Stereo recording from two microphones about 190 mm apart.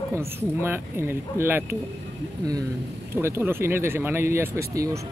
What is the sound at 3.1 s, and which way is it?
Speech, 15° right (ahead or behind).